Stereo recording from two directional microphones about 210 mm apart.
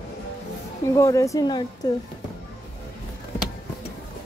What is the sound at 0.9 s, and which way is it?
Speech, 15° left (ahead or behind).